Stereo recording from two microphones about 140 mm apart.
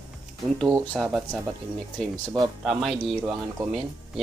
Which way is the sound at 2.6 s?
Centre (ahead or behind).